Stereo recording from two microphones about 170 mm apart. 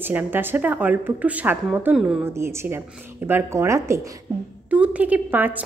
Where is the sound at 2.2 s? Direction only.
15° right (ahead or behind).